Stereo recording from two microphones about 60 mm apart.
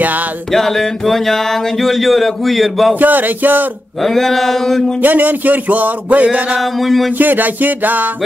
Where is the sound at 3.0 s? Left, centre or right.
Right.